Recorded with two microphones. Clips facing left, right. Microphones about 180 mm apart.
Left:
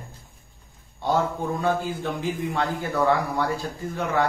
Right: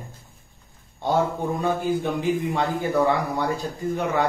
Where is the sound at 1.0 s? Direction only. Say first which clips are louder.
Right 1 dB; 20° right (ahead or behind).